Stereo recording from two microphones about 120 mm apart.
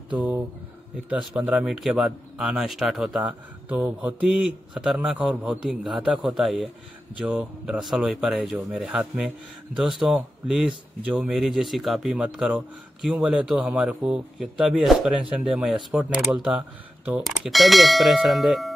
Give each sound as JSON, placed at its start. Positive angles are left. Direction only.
{"t": 0.1, "sound": "a man's voice", "side_deg": -15}